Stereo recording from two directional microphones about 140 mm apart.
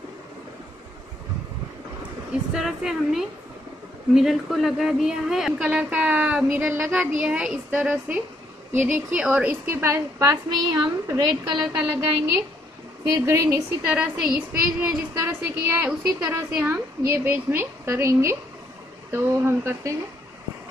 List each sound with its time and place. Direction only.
2.5 s a woman's voice: 5° right (ahead or behind); by 11.7 s 30° right (ahead or behind)
13.1 s a woman's voice: 20° right (ahead or behind)
13.9 s a woman's voice: 5° right (ahead or behind)